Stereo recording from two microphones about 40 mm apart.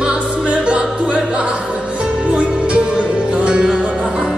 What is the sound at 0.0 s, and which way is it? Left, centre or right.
Music, right.